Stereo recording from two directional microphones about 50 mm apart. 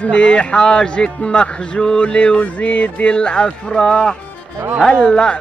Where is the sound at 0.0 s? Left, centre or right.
Left.